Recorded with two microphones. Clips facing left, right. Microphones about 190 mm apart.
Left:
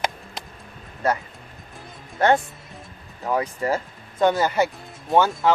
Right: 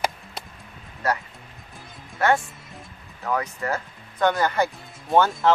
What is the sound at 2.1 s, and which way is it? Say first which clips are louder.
Speech: left 3 dB; 30° left (ahead or behind).